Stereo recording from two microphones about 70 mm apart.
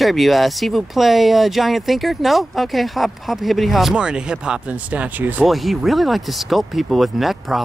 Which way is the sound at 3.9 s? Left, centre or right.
Centre.